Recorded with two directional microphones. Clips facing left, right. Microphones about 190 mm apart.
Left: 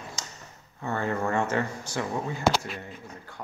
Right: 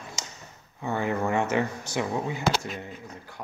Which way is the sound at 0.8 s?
15° right (ahead or behind).